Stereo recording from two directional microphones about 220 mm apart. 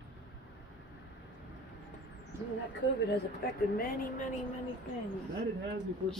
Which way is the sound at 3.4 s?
45° left (ahead or behind).